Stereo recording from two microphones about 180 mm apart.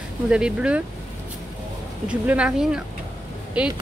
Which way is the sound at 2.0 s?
5° right (ahead or behind).